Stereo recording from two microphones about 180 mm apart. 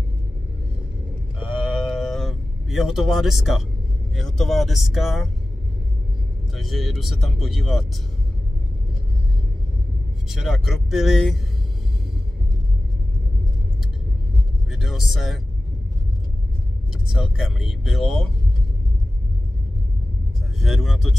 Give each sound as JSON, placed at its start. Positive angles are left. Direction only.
{"t": 2.0, "sound": "music", "side_deg": 0}
{"t": 4.1, "sound": "speech", "side_deg": 0}
{"t": 6.5, "sound": "speech", "side_deg": 0}
{"t": 10.2, "sound": "speech", "side_deg": 0}
{"t": 14.7, "sound": "speech", "side_deg": 0}
{"t": 17.1, "sound": "speech", "side_deg": 0}
{"t": 20.6, "sound": "speech", "side_deg": 0}